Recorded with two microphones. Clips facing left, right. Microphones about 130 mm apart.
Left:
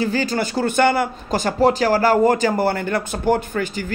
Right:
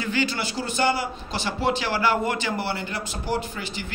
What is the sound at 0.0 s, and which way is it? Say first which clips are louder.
A man's voice: left 5 dB; 40° left (ahead or behind).